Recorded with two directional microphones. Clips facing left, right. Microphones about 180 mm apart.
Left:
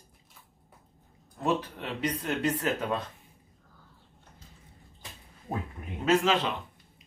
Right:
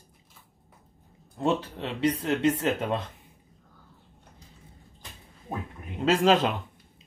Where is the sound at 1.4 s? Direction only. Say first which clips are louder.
Right 2 dB; 25° right (ahead or behind).